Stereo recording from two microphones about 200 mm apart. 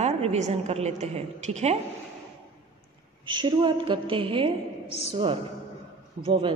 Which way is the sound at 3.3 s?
25° right (ahead or behind).